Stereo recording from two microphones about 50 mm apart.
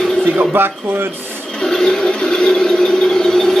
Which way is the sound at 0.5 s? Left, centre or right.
Right.